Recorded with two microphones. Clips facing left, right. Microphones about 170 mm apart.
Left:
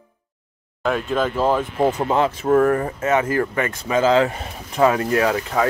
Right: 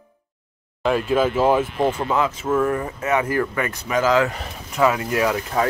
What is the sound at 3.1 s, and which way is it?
Speech, 30° left (ahead or behind).